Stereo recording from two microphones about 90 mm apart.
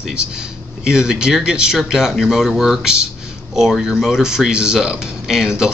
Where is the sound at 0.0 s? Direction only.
10° right (ahead or behind).